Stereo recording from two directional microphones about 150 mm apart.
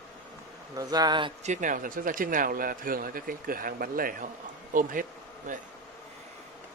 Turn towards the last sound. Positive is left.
turn(degrees=-65)  # may be behind; listen again after turning